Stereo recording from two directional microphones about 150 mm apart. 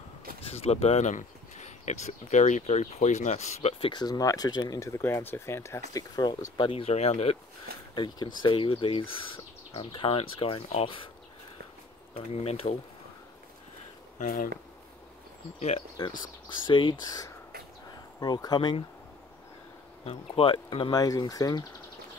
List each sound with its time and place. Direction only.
0.4 s speech: 45° left (ahead or behind)
3.9 s speech: 25° left (ahead or behind); by 7.3 s 45° left (ahead or behind)
7.9 s speech: 30° left (ahead or behind)
12.4 s speech: 45° left (ahead or behind)
14.1 s speech: 65° left (ahead or behind)
16.0 s speech: 30° left (ahead or behind)
20.1 s speech: 35° left (ahead or behind)